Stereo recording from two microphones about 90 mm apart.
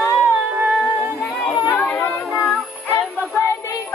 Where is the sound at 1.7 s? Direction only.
20° left (ahead or behind).